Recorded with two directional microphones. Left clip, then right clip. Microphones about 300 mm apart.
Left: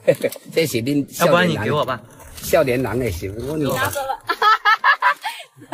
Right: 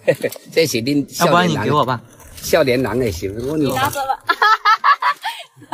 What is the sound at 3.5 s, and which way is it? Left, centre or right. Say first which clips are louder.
Speech: right 3 dB; centre.